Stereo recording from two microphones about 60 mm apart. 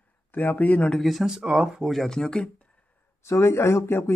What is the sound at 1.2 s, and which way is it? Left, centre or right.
Speech, centre.